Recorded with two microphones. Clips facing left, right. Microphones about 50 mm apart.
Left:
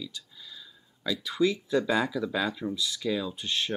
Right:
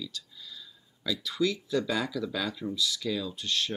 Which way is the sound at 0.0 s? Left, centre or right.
Centre.